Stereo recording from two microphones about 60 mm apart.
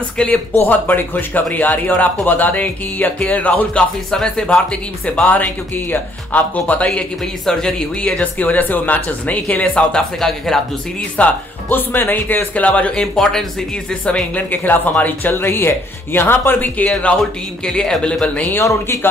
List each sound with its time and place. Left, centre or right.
0.2 s speech: left
4.1 s speech: centre
6.9 s speech: centre
10.2 s speech: centre
11.2 s speech: left
11.7 s speech: left
13.0 s speech: centre
14.0 s speech: left
18.0 s speech: centre
18.6 s speech: left